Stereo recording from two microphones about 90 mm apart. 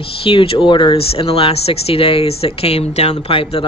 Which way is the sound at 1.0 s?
90° left.